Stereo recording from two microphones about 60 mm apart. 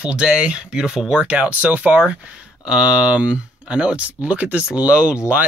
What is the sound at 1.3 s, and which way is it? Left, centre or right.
Speech, right.